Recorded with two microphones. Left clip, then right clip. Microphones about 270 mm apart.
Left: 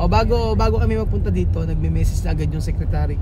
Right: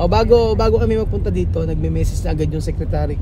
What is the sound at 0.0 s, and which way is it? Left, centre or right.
Speech, centre.